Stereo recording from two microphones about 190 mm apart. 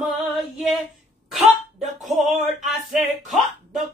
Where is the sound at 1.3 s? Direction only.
Centre (ahead or behind).